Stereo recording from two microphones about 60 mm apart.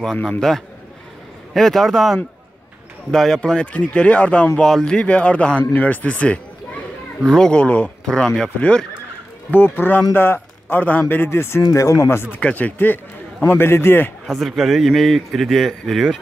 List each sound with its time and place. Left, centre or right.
0.0 s speech: centre
1.5 s a man's voice: centre
3.7 s speech: centre
4.6 s a man's voice: centre
4.8 s speech: centre
7.2 s speech: centre
7.6 s speech: left
8.0 s speech: centre
8.5 s speech: left
9.5 s a man's voice: left
11.2 s speech: left
11.6 s speech: left
12.5 s a man's voice: left
14.2 s a man's voice: centre